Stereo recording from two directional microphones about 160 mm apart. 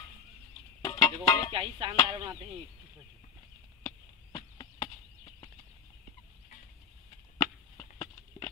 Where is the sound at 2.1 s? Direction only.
25° right (ahead or behind).